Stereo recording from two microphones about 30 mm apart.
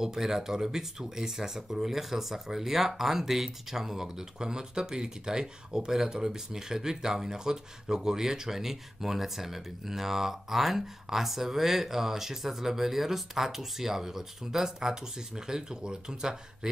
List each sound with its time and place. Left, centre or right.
0.0 s speech: centre